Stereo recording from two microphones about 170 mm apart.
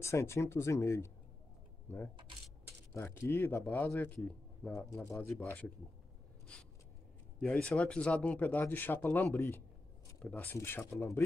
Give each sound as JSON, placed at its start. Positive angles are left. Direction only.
{"t": 0.0, "sound": "speech", "side_deg": 15}
{"t": 2.9, "sound": "speech", "side_deg": 15}
{"t": 7.3, "sound": "speech", "side_deg": 5}